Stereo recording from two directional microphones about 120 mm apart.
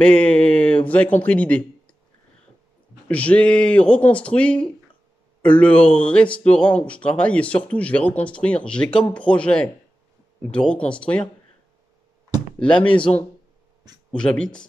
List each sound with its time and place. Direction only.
0.0 s a man's voice: 10° left (ahead or behind)
3.1 s speech: 10° left (ahead or behind)
13.1 s speech: 55° left (ahead or behind)
14.1 s speech: 5° left (ahead or behind)